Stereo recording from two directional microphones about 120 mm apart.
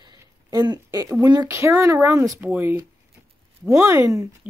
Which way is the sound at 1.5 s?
25° right (ahead or behind).